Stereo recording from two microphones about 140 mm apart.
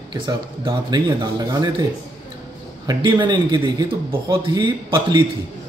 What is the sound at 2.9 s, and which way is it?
Speech, 35° right (ahead or behind).